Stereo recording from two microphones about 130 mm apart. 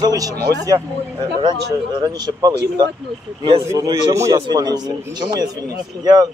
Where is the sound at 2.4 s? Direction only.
30° right (ahead or behind).